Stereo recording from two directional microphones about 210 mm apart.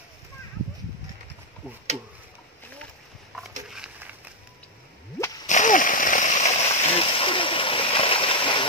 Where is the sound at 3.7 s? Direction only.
5° right (ahead or behind).